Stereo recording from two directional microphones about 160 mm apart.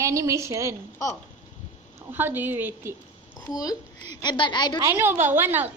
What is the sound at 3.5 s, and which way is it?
A woman's voice, 20° left (ahead or behind).